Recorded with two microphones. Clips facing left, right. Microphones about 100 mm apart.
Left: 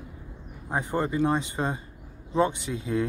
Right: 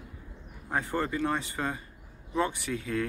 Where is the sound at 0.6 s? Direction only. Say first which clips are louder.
Left 3 dB; 20° left (ahead or behind).